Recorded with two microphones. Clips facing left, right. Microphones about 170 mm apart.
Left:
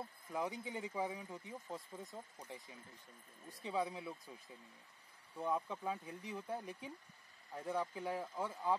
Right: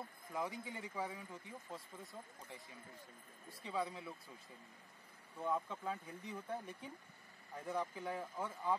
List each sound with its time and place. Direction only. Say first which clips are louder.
0.3 s speech: left 2 dB; 20° left (ahead or behind)
5.4 s speech: left 1 dB; 15° left (ahead or behind)